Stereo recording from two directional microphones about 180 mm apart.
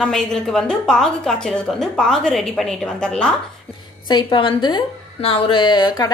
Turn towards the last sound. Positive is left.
turn(degrees=25)  # may be behind; listen again after turning